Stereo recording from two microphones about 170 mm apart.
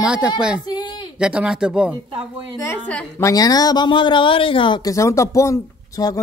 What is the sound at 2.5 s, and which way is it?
Speech, 15° left (ahead or behind).